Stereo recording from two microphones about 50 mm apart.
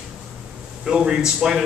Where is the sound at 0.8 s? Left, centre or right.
Centre.